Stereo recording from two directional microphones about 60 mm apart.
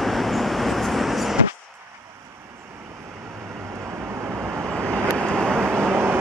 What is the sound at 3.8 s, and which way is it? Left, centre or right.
Vehicle, right.